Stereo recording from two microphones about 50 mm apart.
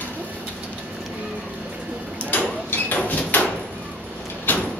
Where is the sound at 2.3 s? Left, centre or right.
Left.